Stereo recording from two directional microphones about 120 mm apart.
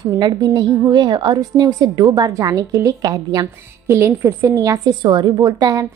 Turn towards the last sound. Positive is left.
turn(degrees=-30)  # may be behind; listen again after turning